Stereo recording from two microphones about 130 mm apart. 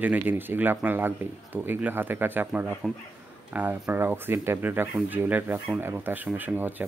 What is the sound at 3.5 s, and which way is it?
Speech, 15° right (ahead or behind).